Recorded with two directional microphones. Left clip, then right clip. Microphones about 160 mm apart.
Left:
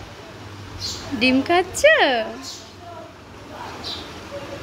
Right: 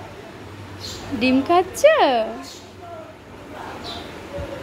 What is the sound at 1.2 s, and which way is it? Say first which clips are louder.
A woman's voice: right 1 dB; centre (ahead or behind).